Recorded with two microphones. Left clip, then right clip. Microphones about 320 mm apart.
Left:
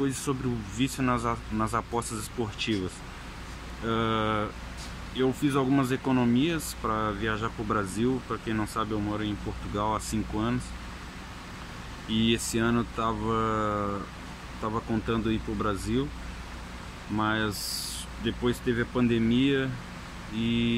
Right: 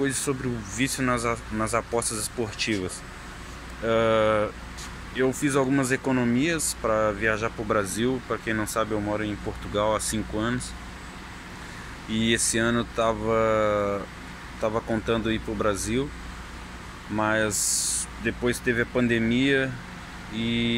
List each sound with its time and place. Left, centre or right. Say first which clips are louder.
0.0 s speech: right 3 dB; centre
3.8 s speech: right 7 dB; centre
12.3 s speech: right 5 dB; centre
17.2 s speech: right 4 dB; centre